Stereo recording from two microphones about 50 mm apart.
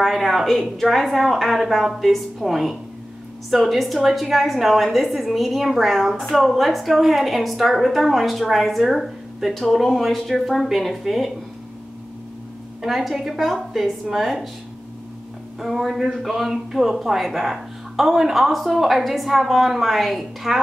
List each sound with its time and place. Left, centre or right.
0.0 s a woman's voice: centre
12.8 s a woman's voice: centre
15.6 s a woman's voice: centre